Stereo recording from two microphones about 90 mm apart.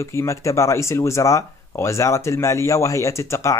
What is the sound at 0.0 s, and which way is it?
Speech, 30° left (ahead or behind).